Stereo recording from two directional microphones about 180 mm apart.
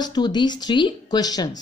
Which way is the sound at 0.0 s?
25° left (ahead or behind).